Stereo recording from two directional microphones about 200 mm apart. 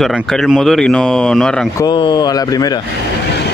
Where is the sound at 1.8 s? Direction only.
20° left (ahead or behind).